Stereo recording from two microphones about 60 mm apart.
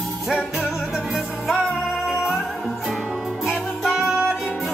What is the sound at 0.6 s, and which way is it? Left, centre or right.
Music, centre.